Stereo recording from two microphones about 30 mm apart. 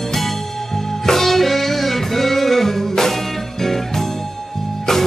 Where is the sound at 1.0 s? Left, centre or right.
Centre.